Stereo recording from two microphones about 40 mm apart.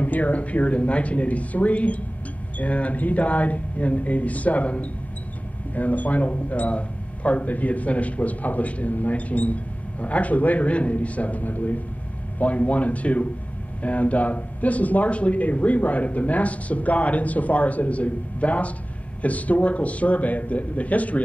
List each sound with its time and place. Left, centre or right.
0.0 s speech: left